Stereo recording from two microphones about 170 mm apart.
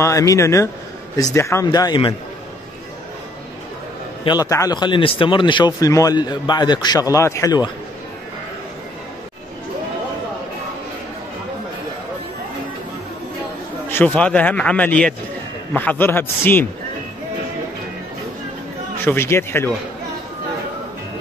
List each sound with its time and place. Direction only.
0.0 s a man's voice: 20° left (ahead or behind)
4.2 s a man's voice: 25° left (ahead or behind)
13.8 s speech: 10° left (ahead or behind)
19.0 s speech: 15° left (ahead or behind)